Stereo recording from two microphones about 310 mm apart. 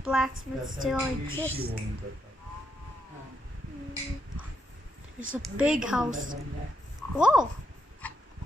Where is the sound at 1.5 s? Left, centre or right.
Right.